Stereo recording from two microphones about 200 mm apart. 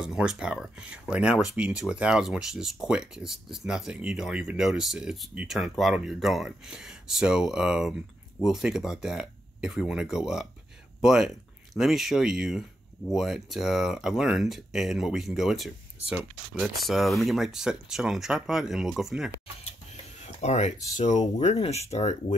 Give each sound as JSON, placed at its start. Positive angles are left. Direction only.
{"t": 0.0, "sound": "speech", "side_deg": -5}
{"t": 20.3, "sound": "speech", "side_deg": 35}